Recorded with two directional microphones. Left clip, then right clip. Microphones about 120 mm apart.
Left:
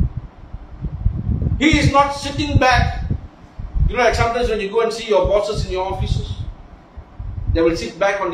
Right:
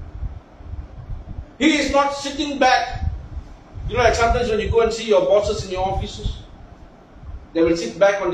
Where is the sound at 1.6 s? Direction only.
Centre (ahead or behind).